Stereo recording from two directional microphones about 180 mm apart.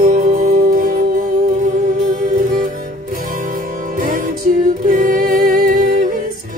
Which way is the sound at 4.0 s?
55° right (ahead or behind).